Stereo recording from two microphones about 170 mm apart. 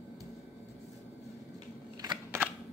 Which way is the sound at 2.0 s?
25° right (ahead or behind).